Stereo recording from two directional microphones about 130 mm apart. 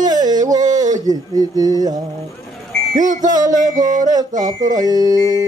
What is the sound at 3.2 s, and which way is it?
Speech, 30° right (ahead or behind).